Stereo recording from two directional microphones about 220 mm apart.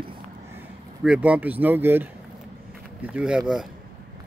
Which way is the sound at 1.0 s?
5° right (ahead or behind).